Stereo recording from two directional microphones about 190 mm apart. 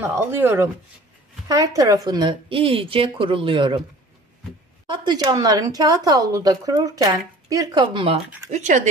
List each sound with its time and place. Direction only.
0.0 s a woman's voice: 10° right (ahead or behind)
4.8 s a woman's voice: 20° right (ahead or behind)
8.5 s speech: 40° right (ahead or behind)